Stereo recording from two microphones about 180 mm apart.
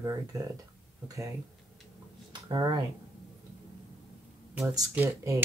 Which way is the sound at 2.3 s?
25° right (ahead or behind).